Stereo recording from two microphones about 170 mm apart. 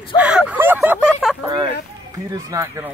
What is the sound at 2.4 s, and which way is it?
Speech, 20° right (ahead or behind).